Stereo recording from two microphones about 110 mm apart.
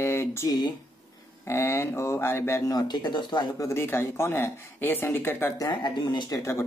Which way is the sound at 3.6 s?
20° left (ahead or behind).